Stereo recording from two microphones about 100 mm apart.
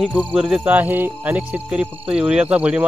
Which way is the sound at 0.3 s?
10° right (ahead or behind).